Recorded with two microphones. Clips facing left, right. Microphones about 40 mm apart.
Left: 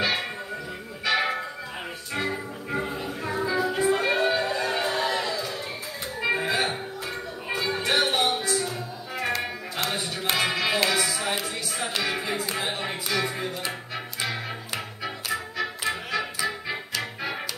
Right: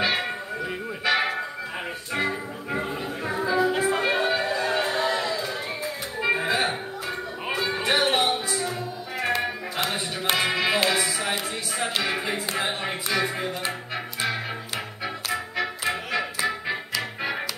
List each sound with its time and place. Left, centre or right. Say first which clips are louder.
0.0 s music: right 2 dB; centre
5.2 s a sound: right 2 dB; right
6.2 s music: right 1 dB; centre
7.5 s a sound: even; centre
8.2 s music: even; centre
15.8 s music: even; centre
16.3 s music: right 3 dB; right